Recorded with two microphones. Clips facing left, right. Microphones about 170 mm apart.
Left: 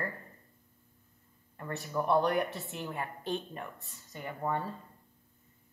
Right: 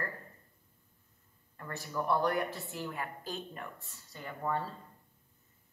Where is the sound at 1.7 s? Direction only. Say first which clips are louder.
Left 3 dB; 20° left (ahead or behind).